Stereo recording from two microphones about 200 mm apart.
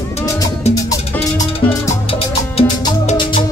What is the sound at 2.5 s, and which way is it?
Music, 20° left (ahead or behind).